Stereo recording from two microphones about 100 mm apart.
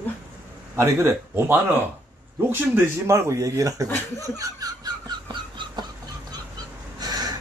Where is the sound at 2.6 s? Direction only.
25° right (ahead or behind).